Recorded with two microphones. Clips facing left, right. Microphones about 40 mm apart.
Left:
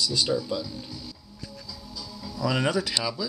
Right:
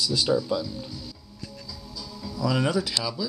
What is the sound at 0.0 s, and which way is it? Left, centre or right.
Speech, centre.